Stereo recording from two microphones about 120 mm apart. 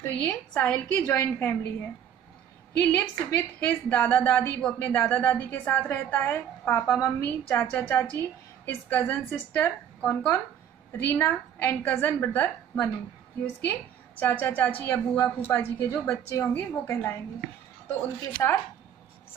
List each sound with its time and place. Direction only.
0.0 s a woman's voice: 20° left (ahead or behind)
2.7 s a woman's voice: 15° left (ahead or behind)
4.6 s a woman's voice: 10° left (ahead or behind)
18.4 s a woman's voice: 20° left (ahead or behind)